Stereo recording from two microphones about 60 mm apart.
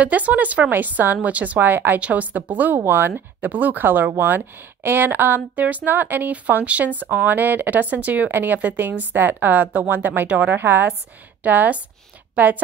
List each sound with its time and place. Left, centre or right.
0.0 s a woman's voice: right